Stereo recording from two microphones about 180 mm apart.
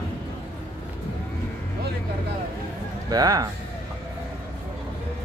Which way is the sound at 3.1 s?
20° right (ahead or behind).